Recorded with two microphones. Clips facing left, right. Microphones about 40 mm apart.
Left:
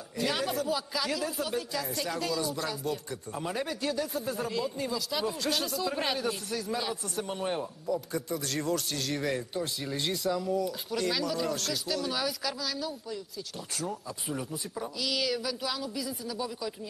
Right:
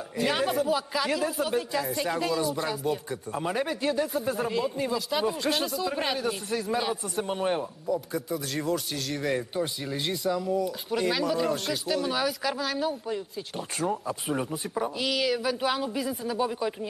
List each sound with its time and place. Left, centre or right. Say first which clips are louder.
0.2 s a man's voice: right 4 dB; centre
7.8 s a man's voice: right 2 dB; centre
10.9 s speech: right 6 dB; right
12.5 s speech: right 6 dB; right
15.0 s speech: right 3 dB; centre
15.6 s speech: right 6 dB; right